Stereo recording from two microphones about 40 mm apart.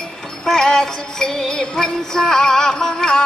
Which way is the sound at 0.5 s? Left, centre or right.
Centre.